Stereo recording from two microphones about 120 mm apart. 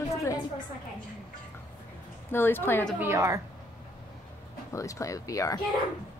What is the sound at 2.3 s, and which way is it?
Speech, 20° left (ahead or behind).